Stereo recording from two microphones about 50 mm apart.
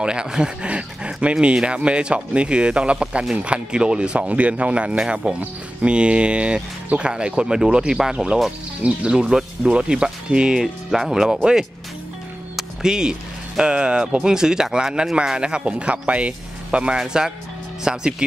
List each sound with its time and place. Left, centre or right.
0.0 s speech: centre
12.5 s music: centre
13.6 s speech: centre